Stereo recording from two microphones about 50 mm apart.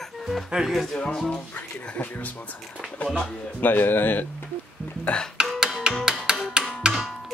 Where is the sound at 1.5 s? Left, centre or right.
Left.